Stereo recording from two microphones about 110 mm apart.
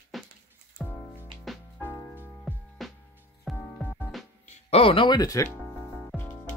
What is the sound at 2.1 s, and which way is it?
Music, 20° left (ahead or behind).